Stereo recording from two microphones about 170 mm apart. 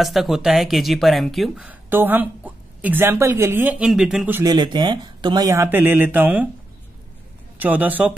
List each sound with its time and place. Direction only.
0.0 s speech: centre (ahead or behind)
4.5 s speech: 25° right (ahead or behind)
7.5 s speech: 10° right (ahead or behind)